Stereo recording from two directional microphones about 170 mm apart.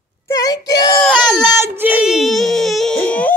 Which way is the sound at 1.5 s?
15° right (ahead or behind).